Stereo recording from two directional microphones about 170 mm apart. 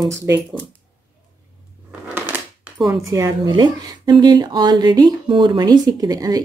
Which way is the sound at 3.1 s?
25° right (ahead or behind).